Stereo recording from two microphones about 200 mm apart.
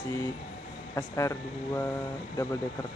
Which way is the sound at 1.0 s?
15° left (ahead or behind).